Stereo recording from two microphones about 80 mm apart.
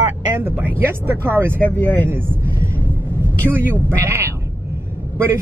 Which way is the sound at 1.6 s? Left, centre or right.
Centre.